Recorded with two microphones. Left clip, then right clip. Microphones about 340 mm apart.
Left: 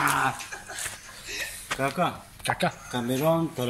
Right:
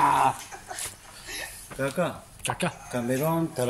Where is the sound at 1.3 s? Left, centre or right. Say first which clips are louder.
Left 3 dB; right.